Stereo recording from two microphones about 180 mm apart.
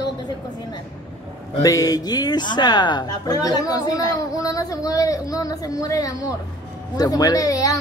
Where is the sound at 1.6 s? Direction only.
20° left (ahead or behind).